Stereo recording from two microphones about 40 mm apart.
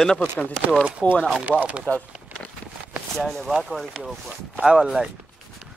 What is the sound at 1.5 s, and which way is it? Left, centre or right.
Speech, centre.